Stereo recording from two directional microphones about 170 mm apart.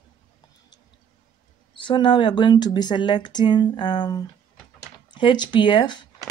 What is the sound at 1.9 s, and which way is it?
Speech, 30° left (ahead or behind).